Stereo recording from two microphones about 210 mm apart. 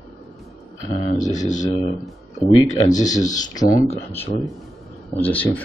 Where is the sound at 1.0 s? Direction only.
35° left (ahead or behind).